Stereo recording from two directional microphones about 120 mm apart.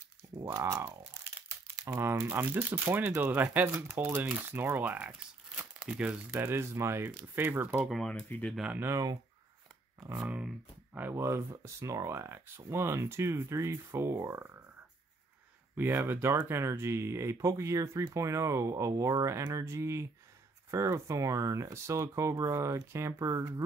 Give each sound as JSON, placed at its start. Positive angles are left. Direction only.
{"t": 0.5, "sound": "speech", "side_deg": -25}
{"t": 5.6, "sound": "crumpling", "side_deg": -10}
{"t": 6.3, "sound": "speech", "side_deg": -20}
{"t": 7.9, "sound": "speech", "side_deg": 5}
{"t": 8.7, "sound": "speech", "side_deg": -20}
{"t": 10.1, "sound": "speech", "side_deg": -10}
{"t": 15.7, "sound": "speech", "side_deg": -15}